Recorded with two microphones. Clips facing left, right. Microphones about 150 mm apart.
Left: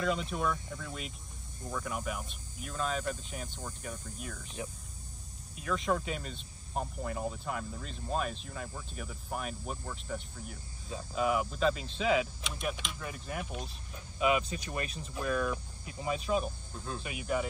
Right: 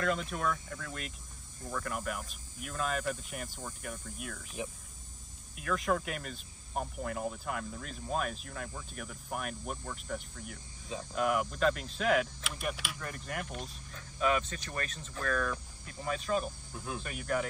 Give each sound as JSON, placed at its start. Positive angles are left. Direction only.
{"t": 0.0, "sound": "speech", "side_deg": 0}
{"t": 5.6, "sound": "speech", "side_deg": 0}
{"t": 16.7, "sound": "speech", "side_deg": -10}
{"t": 17.0, "sound": "speech", "side_deg": 5}